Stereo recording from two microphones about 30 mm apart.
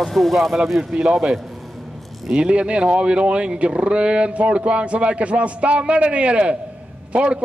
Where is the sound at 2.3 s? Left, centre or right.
Right.